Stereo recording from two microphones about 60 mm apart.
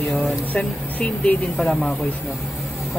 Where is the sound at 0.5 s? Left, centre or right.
Left.